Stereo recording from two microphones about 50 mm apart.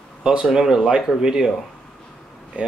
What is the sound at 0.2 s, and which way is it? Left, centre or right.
Speech, centre.